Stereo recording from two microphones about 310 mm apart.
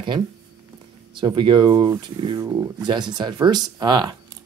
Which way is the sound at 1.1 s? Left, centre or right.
Centre.